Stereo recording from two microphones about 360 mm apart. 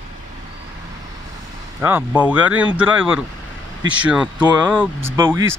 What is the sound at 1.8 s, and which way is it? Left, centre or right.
Speech, centre.